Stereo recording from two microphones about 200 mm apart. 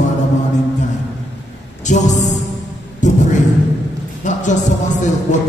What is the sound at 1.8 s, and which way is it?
Speech, 35° left (ahead or behind).